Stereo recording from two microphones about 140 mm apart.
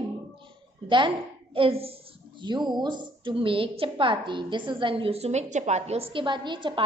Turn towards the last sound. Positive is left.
turn(degrees=-35)  # may be behind; listen again after turning